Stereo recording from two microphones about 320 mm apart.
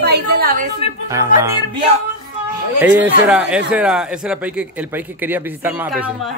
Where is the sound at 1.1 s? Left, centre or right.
Centre.